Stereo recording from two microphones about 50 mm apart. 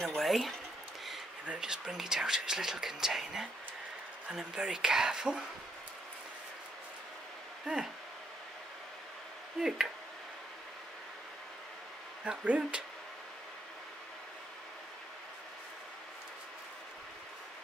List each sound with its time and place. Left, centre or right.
0.1 s a sound: centre
1.6 s speech: centre
7.6 s speech: centre
9.6 s speech: centre
12.3 s speech: right